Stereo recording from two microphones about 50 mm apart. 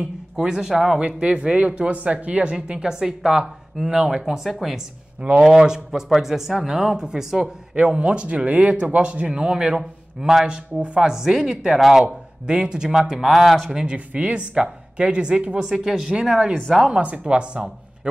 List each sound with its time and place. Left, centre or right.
0.4 s speech: centre
0.9 s speech: right; by 4.8 s centre
5.2 s speech: centre
7.7 s speech: right
9.3 s speech: centre
9.8 s a man's voice: centre
10.4 s speech: right
11.1 s speech: centre
12.4 s speech: centre
13.7 s speech: centre
13.9 s speech: right
15.7 s speech: centre
16.1 s speech: centre